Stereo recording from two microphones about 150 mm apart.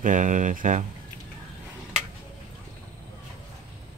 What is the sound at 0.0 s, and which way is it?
Speech, 60° right (ahead or behind).